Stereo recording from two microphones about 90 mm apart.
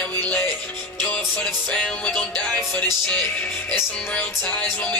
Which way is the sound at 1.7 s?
10° left (ahead or behind).